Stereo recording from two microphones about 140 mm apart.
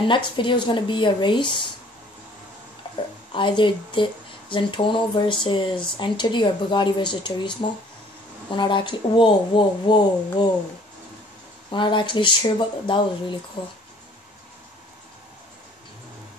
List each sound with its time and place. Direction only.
0.0 s speech: 35° left (ahead or behind)
3.3 s speech: 35° left (ahead or behind)
11.7 s speech: 35° left (ahead or behind)